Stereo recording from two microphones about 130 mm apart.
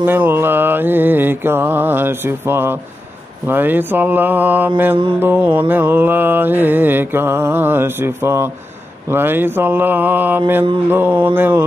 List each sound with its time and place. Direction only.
0.0 s mantra: 15° right (ahead or behind)